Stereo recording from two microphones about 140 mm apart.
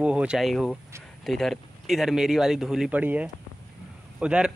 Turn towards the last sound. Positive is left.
turn(degrees=-5)  # may be behind; listen again after turning